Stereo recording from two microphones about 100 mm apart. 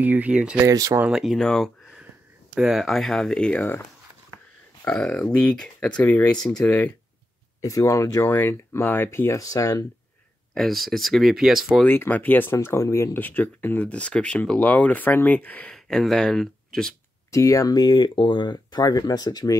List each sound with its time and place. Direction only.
0.0 s speech: 15° right (ahead or behind)
0.7 s speech: 35° right (ahead or behind)
1.1 s speech: centre (ahead or behind)
2.5 s speech: 5° right (ahead or behind)
4.8 s speech: 10° left (ahead or behind)
6.6 s speech: 15° left (ahead or behind)
7.6 s speech: 30° left (ahead or behind)
8.2 s speech: 20° left (ahead or behind)
10.5 s speech: centre (ahead or behind)
11.8 s speech: 20° left (ahead or behind)
12.5 s speech: 30° left (ahead or behind)
15.7 s speech: 5° left (ahead or behind)
17.3 s speech: 30° left (ahead or behind)